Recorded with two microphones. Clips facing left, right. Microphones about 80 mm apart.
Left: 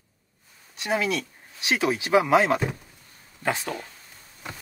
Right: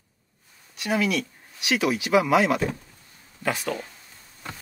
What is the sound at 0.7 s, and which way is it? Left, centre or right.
Speech, left.